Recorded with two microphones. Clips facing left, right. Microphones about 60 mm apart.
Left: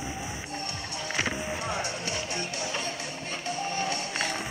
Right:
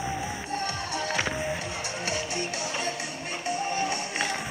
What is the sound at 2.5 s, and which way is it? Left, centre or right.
Music, right.